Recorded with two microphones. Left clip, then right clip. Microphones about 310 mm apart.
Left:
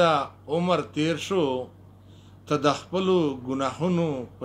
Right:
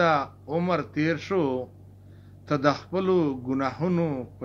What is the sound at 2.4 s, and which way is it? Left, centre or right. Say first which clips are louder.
A man's voice: even; left.